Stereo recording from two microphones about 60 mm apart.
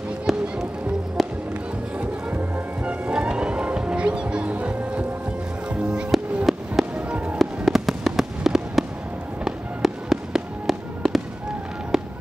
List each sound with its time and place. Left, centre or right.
0.3 s music: centre
2.0 s music: right
6.5 s fireworks: centre
7.1 s music: centre
7.3 s fireworks: centre
11.9 s music: centre